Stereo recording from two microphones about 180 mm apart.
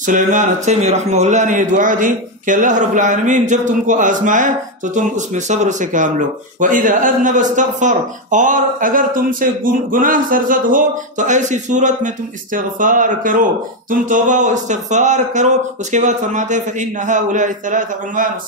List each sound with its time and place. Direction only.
0.0 s a man's voice: 45° right (ahead or behind)